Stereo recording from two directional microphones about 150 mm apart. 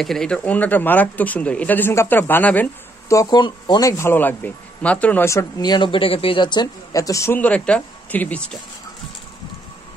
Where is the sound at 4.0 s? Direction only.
15° left (ahead or behind).